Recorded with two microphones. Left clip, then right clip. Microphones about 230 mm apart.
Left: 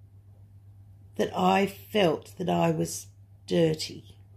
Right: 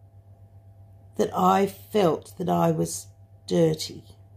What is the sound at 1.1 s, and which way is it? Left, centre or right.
Speech, centre.